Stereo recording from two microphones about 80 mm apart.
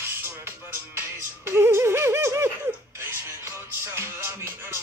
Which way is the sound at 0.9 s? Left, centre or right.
Right.